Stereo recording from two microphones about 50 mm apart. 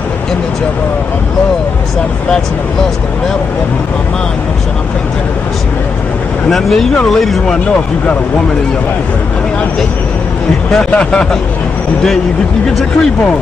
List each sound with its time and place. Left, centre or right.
6.5 s speech: centre
10.7 s speech: centre